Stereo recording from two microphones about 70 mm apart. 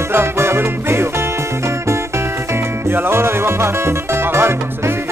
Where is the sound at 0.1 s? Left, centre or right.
Right.